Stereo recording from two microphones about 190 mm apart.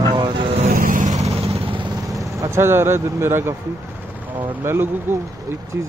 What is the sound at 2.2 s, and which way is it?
Speech, 15° right (ahead or behind).